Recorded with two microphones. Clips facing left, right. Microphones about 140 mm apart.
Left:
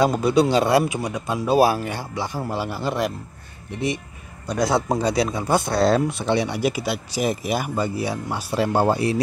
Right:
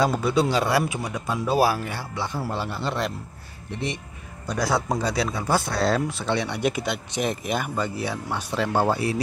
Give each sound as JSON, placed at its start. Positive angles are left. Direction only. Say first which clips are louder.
{"t": 0.0, "sound": "speech", "louder": "left 4 dB", "side_deg": 15}
{"t": 4.6, "sound": "speech", "louder": "left 3 dB", "side_deg": 20}